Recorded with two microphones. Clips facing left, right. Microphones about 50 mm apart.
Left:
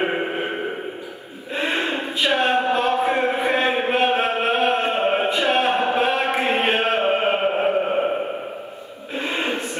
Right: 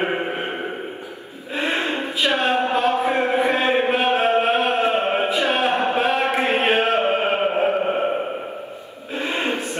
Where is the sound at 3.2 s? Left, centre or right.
Right.